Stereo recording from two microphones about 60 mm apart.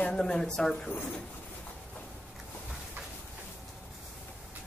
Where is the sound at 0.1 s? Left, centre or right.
Centre.